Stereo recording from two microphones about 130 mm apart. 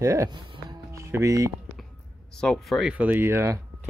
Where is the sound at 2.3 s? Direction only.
5° left (ahead or behind).